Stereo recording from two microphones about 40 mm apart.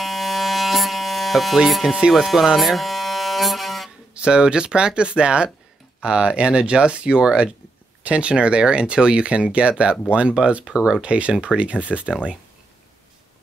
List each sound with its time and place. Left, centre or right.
0.0 s electric shaver: centre
1.7 s speech: centre
2.6 s a sound: centre
4.1 s speech: right